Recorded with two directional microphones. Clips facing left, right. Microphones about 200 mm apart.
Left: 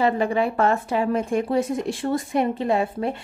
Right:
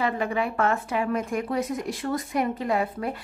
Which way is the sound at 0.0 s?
30° left (ahead or behind).